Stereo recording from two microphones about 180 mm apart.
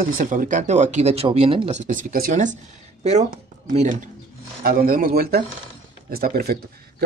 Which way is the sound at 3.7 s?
45° right (ahead or behind).